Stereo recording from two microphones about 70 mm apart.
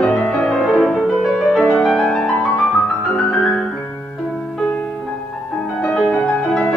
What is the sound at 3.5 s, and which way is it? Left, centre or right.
Piano, centre.